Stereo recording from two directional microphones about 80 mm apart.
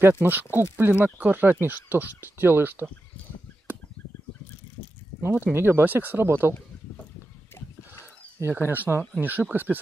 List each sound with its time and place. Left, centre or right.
0.2 s speech: right
5.2 s speech: right
8.4 s speech: right